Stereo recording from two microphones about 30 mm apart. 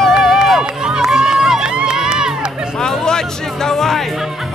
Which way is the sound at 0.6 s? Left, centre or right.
Right.